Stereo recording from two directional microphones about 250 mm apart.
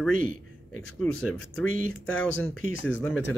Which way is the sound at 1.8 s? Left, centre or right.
Left.